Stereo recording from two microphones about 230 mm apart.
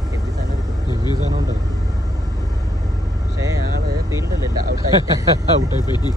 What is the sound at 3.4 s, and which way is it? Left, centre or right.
Vehicle, centre.